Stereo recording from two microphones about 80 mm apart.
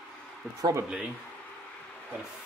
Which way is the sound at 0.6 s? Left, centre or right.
Right.